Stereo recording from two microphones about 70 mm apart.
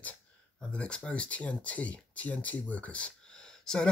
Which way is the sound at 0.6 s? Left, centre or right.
Centre.